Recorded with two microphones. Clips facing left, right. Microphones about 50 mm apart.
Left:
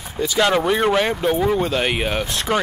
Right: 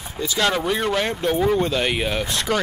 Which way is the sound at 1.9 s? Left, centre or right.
Centre.